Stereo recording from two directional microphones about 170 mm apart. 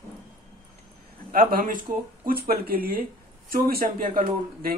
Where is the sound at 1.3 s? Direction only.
55° right (ahead or behind).